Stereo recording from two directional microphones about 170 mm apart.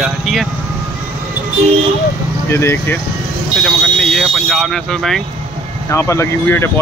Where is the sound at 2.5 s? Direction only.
15° left (ahead or behind).